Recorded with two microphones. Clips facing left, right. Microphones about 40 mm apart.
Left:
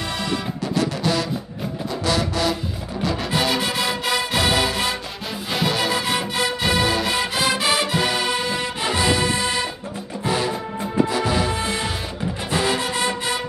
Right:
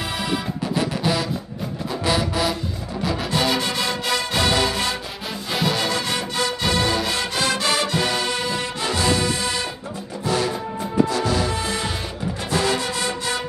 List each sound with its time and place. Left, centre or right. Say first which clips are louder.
0.7 s music: left 1 dB; centre